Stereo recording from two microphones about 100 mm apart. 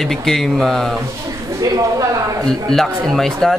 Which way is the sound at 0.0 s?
5° left (ahead or behind).